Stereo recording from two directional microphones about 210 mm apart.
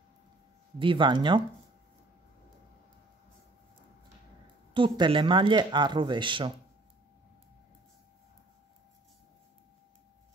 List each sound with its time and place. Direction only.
0.7 s speech: 25° right (ahead or behind)
4.7 s speech: 25° right (ahead or behind)